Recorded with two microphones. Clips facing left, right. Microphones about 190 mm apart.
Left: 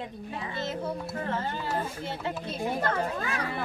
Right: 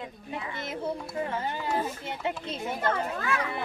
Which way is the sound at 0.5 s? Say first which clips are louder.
Left 1 dB; 15° right (ahead or behind).